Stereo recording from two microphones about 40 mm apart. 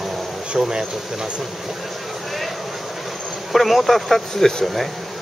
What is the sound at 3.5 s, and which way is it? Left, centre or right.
Speech, centre.